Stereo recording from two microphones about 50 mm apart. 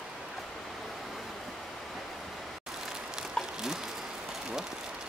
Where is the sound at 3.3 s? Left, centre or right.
Centre.